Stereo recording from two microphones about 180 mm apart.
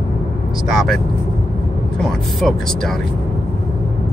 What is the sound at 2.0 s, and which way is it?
Speech, centre (ahead or behind).